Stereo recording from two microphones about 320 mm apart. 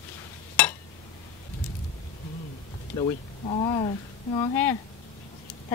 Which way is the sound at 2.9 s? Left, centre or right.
Centre.